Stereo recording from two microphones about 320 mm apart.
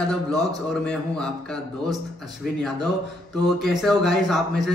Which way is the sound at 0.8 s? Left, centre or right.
Centre.